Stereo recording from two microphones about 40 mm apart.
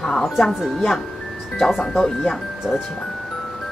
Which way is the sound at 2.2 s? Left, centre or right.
Centre.